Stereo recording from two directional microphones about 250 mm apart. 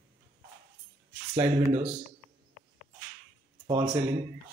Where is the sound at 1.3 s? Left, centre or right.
Right.